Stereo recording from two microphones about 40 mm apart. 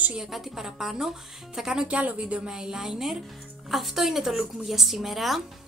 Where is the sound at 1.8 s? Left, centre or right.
Right.